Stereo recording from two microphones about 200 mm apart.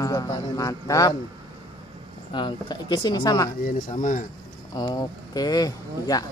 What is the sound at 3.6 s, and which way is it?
Speech, 40° left (ahead or behind).